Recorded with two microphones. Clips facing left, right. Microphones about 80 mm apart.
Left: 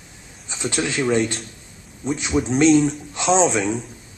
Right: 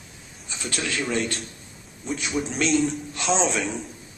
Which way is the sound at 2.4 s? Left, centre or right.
Centre.